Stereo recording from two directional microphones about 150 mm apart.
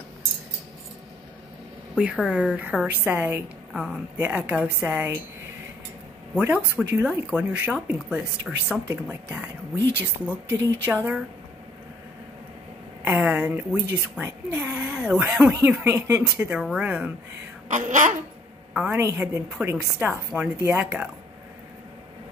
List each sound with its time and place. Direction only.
2.2 s a woman's voice: 5° right (ahead or behind)
6.3 s a woman's voice: 10° right (ahead or behind)
13.0 s a woman's voice: 10° right (ahead or behind)
17.6 s speech: 55° right (ahead or behind)
18.7 s a woman's voice: 5° right (ahead or behind)
18.9 s a woman's voice: 20° right (ahead or behind)